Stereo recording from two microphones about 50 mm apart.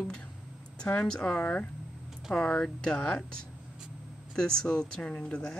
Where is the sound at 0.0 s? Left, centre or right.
Centre.